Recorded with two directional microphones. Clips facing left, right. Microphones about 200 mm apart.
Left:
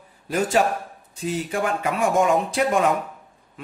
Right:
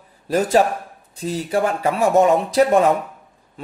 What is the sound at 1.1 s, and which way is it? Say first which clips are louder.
Speech: right 4 dB; 35° right (ahead or behind).